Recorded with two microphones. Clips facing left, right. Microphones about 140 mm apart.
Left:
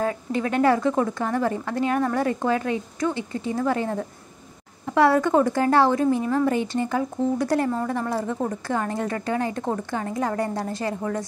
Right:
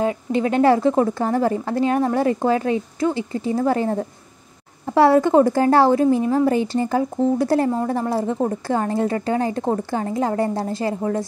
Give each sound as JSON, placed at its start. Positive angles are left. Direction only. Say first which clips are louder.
{"t": 0.0, "sound": "a woman's voice", "louder": "right 4 dB", "side_deg": -20}